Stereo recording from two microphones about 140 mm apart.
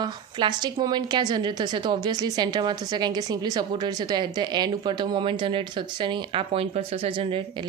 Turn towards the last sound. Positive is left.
turn(degrees=-35)  # may be behind; listen again after turning